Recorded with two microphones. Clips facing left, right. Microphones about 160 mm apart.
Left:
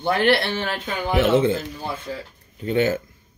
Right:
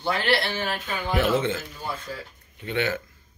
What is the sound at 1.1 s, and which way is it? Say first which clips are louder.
Speech: left 5 dB; 25° left (ahead or behind).